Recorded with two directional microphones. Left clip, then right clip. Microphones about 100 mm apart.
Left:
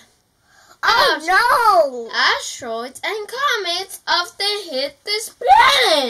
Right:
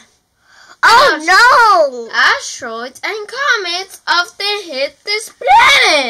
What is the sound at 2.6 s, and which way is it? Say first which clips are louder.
A child's voice: right 2 dB; 20° right (ahead or behind).